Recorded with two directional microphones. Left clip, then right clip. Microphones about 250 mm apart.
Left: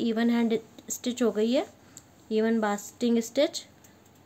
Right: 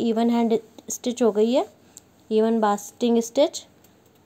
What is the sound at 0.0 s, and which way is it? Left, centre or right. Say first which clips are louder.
Speech: right 5 dB; centre.